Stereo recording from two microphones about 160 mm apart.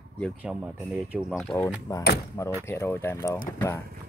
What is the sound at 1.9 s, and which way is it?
Speech, 20° left (ahead or behind).